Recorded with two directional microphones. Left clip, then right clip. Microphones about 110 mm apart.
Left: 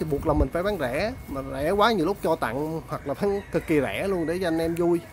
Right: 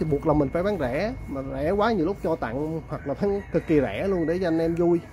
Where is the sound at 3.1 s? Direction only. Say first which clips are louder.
Right 1 dB; 15° left (ahead or behind).